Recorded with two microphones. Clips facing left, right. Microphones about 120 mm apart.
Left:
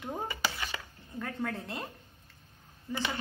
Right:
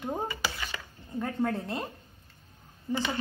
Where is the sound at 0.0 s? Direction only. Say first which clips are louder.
Right 4 dB; 20° right (ahead or behind).